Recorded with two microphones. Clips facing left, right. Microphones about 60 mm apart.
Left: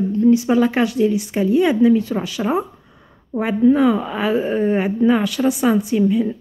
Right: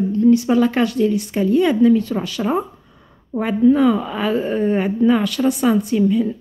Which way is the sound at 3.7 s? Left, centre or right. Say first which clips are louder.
Even; centre.